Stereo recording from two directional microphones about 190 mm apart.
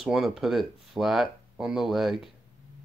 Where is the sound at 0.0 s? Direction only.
Centre (ahead or behind).